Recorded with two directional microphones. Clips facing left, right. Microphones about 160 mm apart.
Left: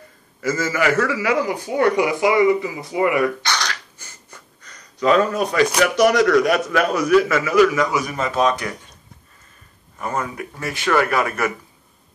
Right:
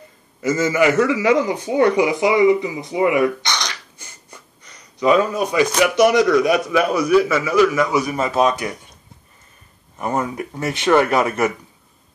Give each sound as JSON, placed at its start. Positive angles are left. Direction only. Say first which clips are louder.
{"t": 0.4, "sound": "a man's voice", "louder": "right 4 dB", "side_deg": -20}
{"t": 9.9, "sound": "speech", "louder": "right 3 dB", "side_deg": -20}